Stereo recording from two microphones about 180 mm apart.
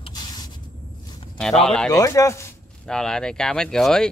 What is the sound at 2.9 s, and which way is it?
Speech, 5° left (ahead or behind).